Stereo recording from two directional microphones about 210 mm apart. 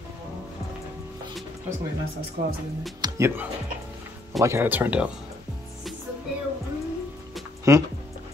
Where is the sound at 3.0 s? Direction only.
15° right (ahead or behind).